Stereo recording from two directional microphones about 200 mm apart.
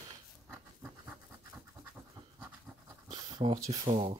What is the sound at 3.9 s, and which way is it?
Speech, 30° right (ahead or behind).